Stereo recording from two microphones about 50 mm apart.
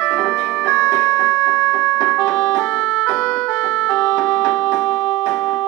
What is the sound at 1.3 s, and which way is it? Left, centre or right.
Music, left.